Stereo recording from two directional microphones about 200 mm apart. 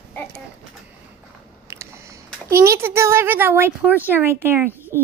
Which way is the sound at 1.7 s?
15° right (ahead or behind).